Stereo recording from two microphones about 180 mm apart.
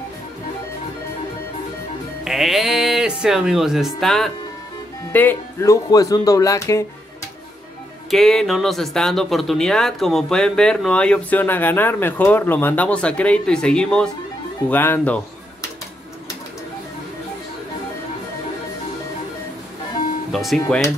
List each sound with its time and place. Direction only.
2.2 s speech: centre (ahead or behind); by 6.9 s 15° left (ahead or behind)
8.1 s speech: centre (ahead or behind)
20.2 s speech: centre (ahead or behind)